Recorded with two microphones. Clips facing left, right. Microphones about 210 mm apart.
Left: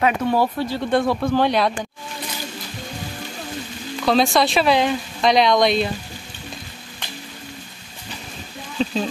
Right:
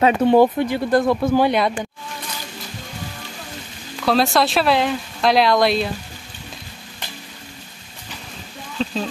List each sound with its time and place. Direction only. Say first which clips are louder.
0.0 s speech: right 6 dB; 20° right (ahead or behind)
0.9 s speech: right 2 dB; centre (ahead or behind)
4.0 s speech: even; centre (ahead or behind)
8.7 s speech: left 2 dB; 5° left (ahead or behind)